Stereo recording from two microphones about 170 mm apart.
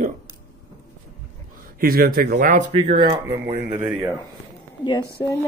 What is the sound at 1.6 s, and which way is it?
Speech, 60° right (ahead or behind).